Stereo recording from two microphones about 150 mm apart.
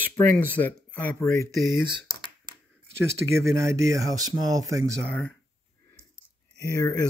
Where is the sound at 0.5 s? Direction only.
10° left (ahead or behind).